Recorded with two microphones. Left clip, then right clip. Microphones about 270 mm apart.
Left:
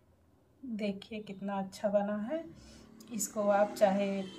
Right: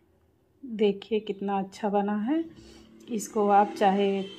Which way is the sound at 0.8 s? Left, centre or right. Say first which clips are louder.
Right 15 dB; right.